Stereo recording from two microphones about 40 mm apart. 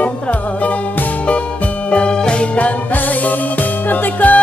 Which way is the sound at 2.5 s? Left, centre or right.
Left.